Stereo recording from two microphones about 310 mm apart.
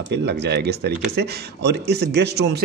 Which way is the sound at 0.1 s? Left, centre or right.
Right.